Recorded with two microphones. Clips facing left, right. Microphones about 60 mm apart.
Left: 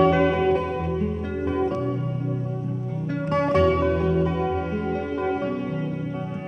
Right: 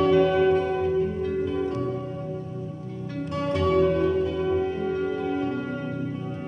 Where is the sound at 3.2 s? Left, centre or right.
Left.